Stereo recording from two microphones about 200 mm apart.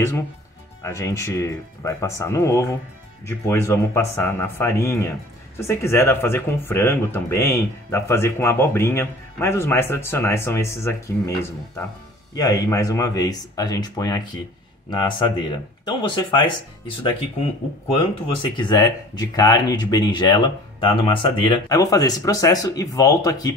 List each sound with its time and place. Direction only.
0.8 s speech: 15° left (ahead or behind)
12.4 s speech: 15° left (ahead or behind)
18.6 s speech: 20° left (ahead or behind)